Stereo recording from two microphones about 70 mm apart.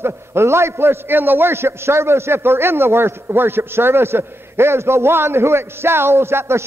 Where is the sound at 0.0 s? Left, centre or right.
Right.